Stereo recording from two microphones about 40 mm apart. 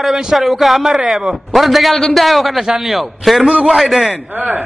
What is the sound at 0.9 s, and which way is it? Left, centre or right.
Speech, centre.